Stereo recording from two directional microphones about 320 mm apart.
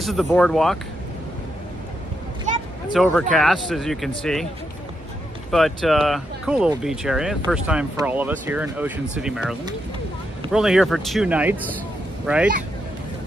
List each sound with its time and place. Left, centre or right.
0.0 s speech: centre
2.5 s a sound: right
2.9 s speech: centre
5.5 s speech: centre